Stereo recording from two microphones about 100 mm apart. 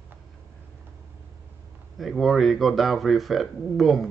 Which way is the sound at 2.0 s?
Centre (ahead or behind).